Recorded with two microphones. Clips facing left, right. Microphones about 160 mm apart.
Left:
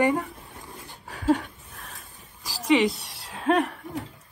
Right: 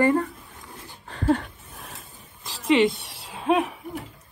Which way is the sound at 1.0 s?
Centre (ahead or behind).